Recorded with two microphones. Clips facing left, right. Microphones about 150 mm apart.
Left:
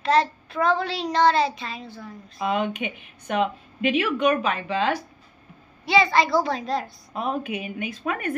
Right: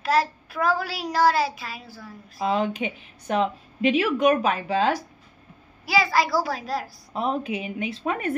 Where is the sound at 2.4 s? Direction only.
30° right (ahead or behind).